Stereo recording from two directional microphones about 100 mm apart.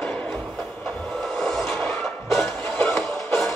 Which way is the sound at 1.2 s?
Centre (ahead or behind).